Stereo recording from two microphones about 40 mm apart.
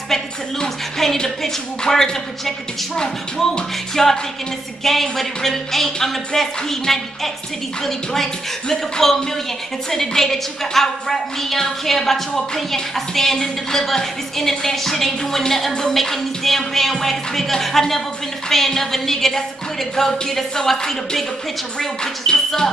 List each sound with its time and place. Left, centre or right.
1.0 s a woman's voice: centre